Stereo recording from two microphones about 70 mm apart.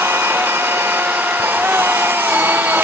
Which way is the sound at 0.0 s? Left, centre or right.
Right.